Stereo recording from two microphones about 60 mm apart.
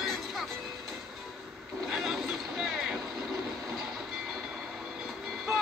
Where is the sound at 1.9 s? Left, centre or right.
Centre.